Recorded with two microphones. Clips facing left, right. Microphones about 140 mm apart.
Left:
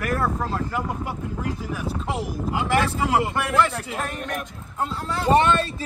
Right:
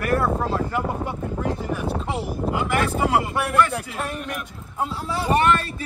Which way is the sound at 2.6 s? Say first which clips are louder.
Left 2 dB; 30° left (ahead or behind).